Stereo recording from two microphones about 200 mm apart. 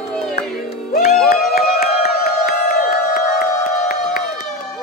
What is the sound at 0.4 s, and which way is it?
Music, 50° left (ahead or behind).